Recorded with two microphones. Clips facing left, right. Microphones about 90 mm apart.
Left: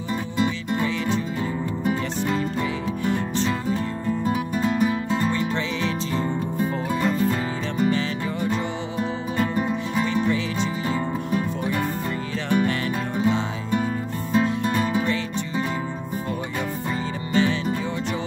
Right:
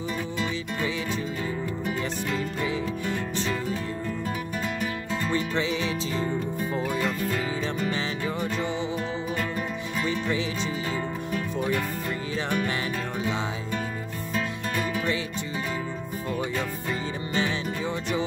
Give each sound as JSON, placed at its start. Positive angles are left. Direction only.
{"t": 1.9, "sound": "music", "side_deg": 30}
{"t": 7.0, "sound": "music", "side_deg": 25}
{"t": 9.4, "sound": "music", "side_deg": 20}
{"t": 14.3, "sound": "music", "side_deg": 25}
{"t": 17.3, "sound": "music", "side_deg": -20}